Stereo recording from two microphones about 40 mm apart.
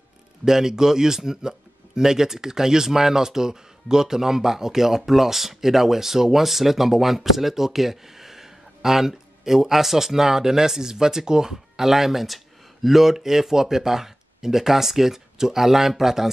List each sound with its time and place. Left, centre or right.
0.5 s a man's voice: centre